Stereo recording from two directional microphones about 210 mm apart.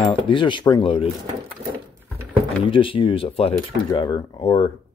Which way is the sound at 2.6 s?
25° left (ahead or behind).